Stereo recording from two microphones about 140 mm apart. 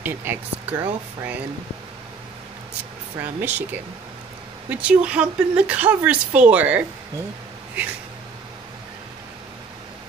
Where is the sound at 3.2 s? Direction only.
15° right (ahead or behind).